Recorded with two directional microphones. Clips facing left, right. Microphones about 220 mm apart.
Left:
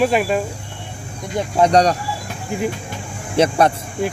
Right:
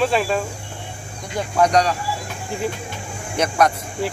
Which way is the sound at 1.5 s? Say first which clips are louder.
Left 3 dB; 25° left (ahead or behind).